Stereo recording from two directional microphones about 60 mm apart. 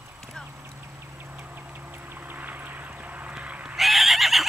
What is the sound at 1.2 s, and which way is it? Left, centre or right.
Vehicle, right.